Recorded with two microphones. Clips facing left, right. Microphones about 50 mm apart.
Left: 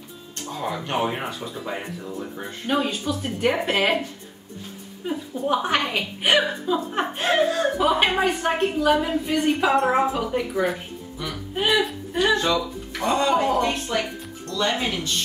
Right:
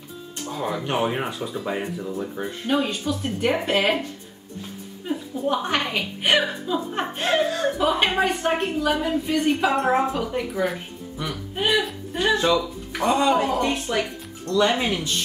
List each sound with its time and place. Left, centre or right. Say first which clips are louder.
0.5 s speech: right 1 dB; centre
5.0 s a woman's voice: even; centre
9.8 s a woman's voice: left 1 dB; left
10.1 s speech: left 1 dB; centre